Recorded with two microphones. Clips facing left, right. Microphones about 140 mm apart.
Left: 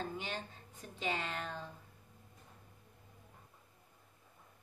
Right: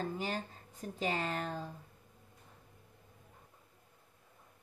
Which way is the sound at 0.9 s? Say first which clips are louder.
Right 3 dB; 40° right (ahead or behind).